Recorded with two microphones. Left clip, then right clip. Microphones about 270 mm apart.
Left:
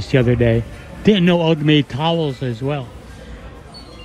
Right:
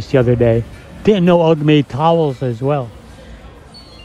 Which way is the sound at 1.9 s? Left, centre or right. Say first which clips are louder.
Right 6 dB; left.